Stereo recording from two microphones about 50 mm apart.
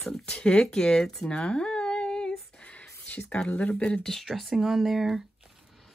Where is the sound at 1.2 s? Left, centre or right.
Left.